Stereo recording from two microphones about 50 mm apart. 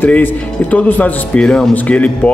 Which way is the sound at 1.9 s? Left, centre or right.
Left.